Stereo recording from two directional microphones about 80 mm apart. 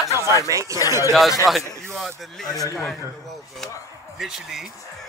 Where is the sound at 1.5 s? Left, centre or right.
Centre.